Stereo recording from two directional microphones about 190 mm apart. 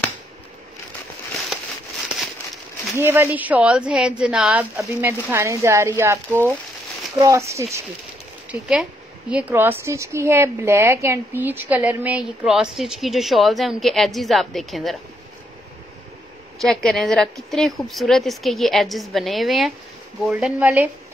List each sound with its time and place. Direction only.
3.0 s a woman's voice: 10° right (ahead or behind)
8.5 s a woman's voice: 5° right (ahead or behind)
16.5 s a woman's voice: centre (ahead or behind)